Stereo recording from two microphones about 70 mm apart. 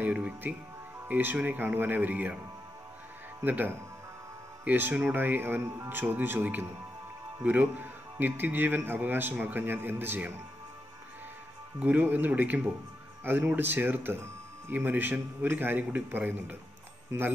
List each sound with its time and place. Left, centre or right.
0.0 s music: right
1.0 s a man's voice: right
3.4 s a man's voice: right
11.8 s a man's voice: right